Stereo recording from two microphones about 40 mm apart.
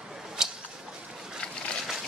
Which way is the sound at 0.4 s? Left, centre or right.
Centre.